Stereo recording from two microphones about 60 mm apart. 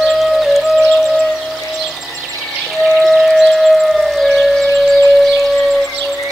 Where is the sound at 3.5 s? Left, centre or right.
Centre.